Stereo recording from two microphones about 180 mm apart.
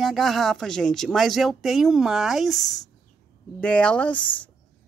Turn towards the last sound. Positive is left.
turn(degrees=10)  # may be behind; listen again after turning